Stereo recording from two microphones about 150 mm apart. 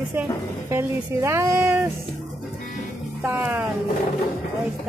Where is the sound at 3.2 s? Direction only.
15° right (ahead or behind).